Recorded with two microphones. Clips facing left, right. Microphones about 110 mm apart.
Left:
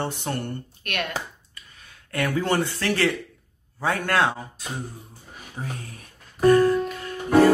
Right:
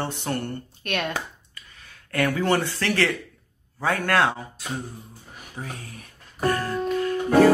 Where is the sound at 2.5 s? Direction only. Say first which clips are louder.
Even; 20° left (ahead or behind).